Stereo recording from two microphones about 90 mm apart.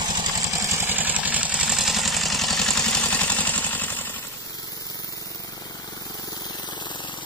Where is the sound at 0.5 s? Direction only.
35° right (ahead or behind).